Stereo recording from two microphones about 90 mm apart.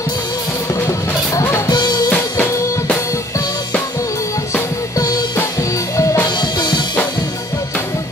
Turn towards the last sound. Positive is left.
turn(degrees=55)  # may be behind; listen again after turning